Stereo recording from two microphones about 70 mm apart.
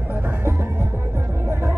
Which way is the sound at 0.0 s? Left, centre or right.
Right.